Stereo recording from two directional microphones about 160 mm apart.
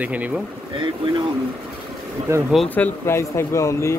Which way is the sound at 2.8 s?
15° left (ahead or behind).